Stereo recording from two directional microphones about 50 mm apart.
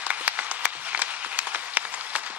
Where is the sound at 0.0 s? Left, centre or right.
Right.